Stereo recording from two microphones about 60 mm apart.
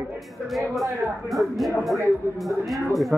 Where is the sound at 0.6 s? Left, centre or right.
Centre.